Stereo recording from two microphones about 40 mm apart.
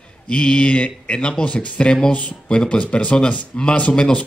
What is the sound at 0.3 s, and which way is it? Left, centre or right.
Speech, left.